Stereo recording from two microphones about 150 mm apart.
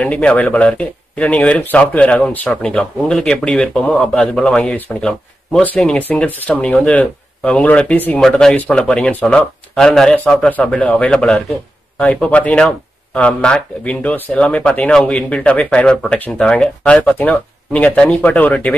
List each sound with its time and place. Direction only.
0.0 s speech: 10° left (ahead or behind)